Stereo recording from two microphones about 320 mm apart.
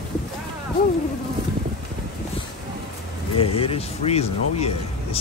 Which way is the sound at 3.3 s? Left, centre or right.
Centre.